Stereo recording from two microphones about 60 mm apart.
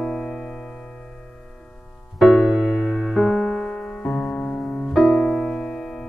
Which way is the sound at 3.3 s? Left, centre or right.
Centre.